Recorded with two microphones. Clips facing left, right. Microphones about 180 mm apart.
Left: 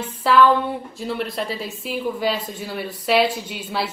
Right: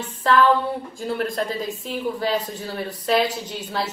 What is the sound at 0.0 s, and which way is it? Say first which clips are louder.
A woman's voice: left 2 dB; 10° left (ahead or behind).